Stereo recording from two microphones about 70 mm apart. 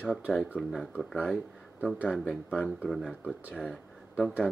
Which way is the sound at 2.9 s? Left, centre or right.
Centre.